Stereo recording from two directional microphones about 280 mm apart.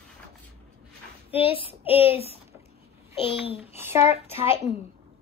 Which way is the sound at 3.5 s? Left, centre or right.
Centre.